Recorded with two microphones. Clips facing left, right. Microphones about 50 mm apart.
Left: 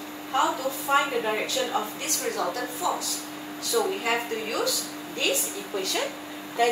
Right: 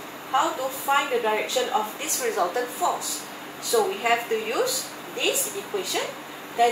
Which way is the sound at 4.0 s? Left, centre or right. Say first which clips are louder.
Right 4 dB; centre.